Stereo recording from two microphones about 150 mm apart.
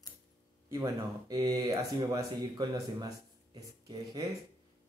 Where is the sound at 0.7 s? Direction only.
25° right (ahead or behind).